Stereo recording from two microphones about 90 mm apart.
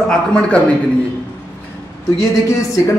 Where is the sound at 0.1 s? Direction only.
10° left (ahead or behind).